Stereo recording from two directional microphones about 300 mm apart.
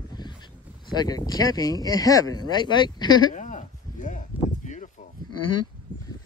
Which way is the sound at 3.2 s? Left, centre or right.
Left.